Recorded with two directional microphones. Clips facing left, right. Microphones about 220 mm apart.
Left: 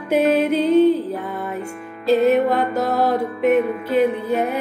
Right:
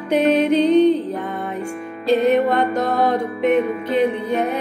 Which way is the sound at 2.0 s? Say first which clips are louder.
Even; 5° left (ahead or behind).